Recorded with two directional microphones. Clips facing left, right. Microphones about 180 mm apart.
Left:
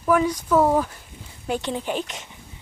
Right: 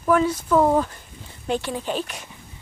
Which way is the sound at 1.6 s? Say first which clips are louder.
Even; 15° left (ahead or behind).